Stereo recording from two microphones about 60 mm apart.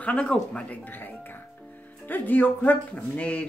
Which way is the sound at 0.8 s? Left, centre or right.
Left.